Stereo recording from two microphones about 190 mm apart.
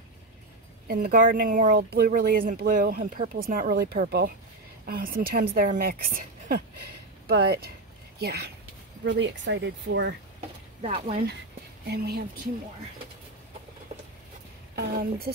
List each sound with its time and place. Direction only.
0.8 s speech: 50° right (ahead or behind)
9.0 s speech: 70° right (ahead or behind)
10.8 s speech: 35° right (ahead or behind)
11.8 s speech: 55° right (ahead or behind)
14.8 s speech: 55° right (ahead or behind)